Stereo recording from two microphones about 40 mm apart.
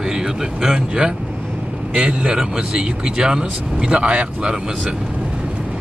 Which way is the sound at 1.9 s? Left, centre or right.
Right.